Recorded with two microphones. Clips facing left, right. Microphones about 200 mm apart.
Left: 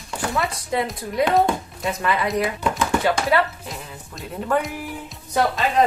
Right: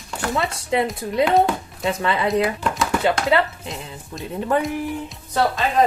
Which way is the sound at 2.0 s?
25° right (ahead or behind).